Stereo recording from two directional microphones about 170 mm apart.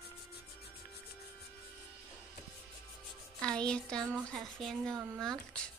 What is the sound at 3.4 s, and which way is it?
Speech, 5° left (ahead or behind).